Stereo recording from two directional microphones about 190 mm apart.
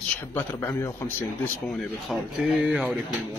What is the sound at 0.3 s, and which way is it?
A man's voice, 10° left (ahead or behind).